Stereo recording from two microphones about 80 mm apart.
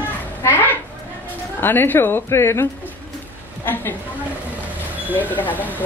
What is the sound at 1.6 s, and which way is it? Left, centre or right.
A woman's voice, left.